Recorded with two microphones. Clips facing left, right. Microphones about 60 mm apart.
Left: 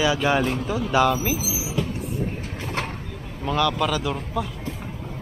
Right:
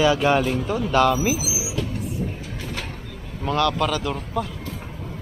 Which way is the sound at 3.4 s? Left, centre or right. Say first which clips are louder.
Right 1 dB; centre.